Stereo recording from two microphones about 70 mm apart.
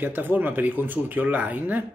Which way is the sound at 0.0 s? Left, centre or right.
Right.